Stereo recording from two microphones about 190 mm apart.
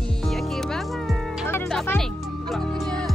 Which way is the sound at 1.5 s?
5° left (ahead or behind).